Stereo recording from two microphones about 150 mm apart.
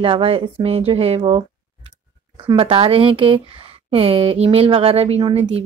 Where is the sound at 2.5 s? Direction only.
40° right (ahead or behind).